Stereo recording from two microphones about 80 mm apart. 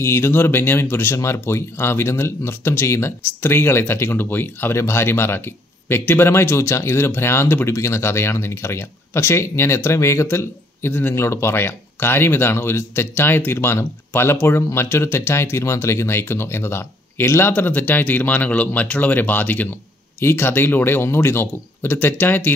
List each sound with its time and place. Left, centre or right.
0.0 s speech: left